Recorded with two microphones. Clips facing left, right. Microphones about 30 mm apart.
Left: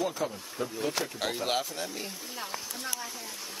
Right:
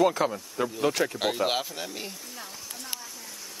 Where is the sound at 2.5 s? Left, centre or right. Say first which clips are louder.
Left 4 dB; left.